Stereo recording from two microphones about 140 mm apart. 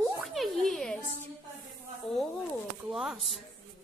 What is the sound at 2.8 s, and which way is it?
Speech, centre (ahead or behind).